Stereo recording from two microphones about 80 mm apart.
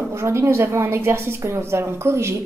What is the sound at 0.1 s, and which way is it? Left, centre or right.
A woman's voice, right.